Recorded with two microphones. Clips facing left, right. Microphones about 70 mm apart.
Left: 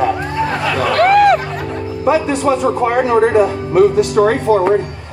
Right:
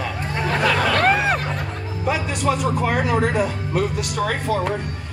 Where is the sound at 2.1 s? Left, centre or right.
Left.